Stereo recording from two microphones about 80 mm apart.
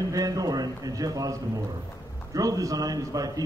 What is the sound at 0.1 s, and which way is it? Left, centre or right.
A man's voice, right.